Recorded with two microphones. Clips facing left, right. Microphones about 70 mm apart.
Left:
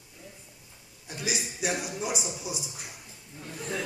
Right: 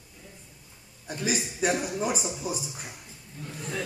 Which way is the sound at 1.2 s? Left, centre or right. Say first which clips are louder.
Right 4 dB; right.